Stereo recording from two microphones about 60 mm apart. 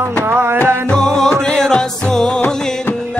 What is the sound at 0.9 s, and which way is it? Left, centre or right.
Music, centre.